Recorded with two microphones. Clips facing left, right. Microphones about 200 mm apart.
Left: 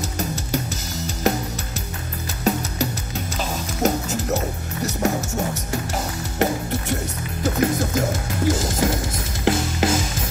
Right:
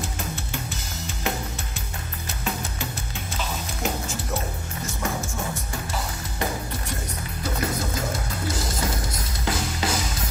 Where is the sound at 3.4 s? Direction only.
40° left (ahead or behind).